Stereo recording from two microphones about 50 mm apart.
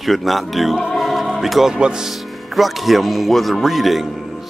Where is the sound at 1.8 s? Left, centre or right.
Centre.